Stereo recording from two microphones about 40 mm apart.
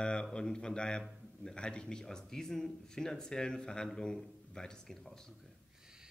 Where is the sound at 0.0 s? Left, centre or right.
Left.